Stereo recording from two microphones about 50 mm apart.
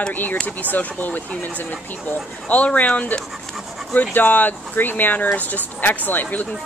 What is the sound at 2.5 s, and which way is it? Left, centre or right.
Speech, left.